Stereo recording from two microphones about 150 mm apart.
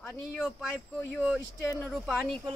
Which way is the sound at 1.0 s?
10° right (ahead or behind).